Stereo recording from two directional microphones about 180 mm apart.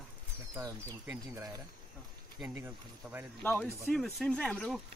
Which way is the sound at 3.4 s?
10° left (ahead or behind).